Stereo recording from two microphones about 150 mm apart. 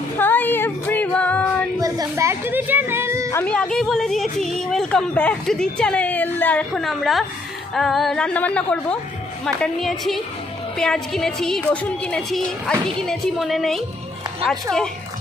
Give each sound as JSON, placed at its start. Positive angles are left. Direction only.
{"t": 0.2, "sound": "female singing", "side_deg": 15}
{"t": 1.8, "sound": "a sound", "side_deg": -20}
{"t": 3.3, "sound": "speech", "side_deg": 10}
{"t": 6.7, "sound": "a woman's voice", "side_deg": 0}